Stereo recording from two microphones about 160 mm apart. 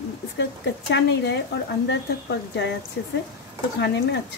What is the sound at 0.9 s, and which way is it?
Speech, 90° left.